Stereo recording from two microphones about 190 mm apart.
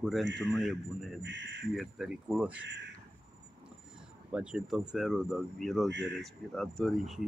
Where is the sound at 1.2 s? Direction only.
70° right (ahead or behind).